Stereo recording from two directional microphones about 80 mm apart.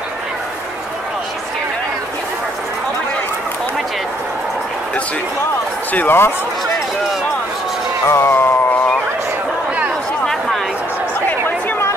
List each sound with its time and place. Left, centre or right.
5.9 s speech: left
8.1 s speech: left
11.2 s chatter: left